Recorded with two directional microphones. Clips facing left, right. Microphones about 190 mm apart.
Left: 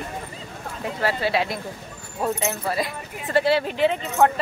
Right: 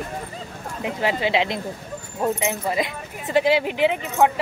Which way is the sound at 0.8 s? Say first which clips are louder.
Right 1 dB; 15° right (ahead or behind).